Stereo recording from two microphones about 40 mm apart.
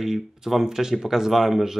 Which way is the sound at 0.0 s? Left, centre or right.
Centre.